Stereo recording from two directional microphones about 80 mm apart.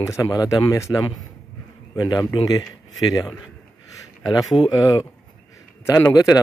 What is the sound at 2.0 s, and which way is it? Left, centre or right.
Speech, left.